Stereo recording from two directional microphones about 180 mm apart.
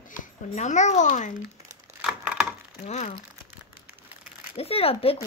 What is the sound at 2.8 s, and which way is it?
Speech, 40° left (ahead or behind).